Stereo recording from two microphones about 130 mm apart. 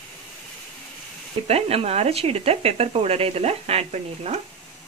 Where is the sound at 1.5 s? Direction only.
50° right (ahead or behind).